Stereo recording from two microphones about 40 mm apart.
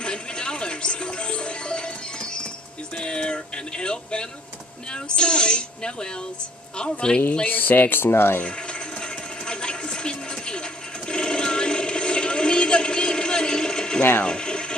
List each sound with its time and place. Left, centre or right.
0.0 s music: left
3.0 s music: left
4.9 s speech: left
7.4 s speech: left
9.0 s music: left
11.1 s a sound: left
14.2 s mechanisms: left